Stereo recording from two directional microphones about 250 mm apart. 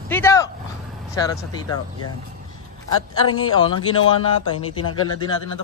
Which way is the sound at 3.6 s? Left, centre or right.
Centre.